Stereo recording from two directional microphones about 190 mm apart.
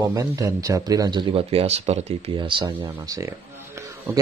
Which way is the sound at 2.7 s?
10° right (ahead or behind).